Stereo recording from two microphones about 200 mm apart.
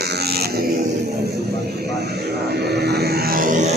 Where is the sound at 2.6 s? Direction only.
55° right (ahead or behind).